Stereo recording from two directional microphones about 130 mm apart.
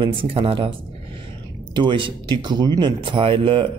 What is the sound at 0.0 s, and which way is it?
Speech, 40° right (ahead or behind).